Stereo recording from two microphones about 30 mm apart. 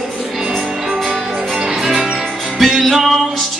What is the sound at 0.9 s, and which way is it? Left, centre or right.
Music, centre.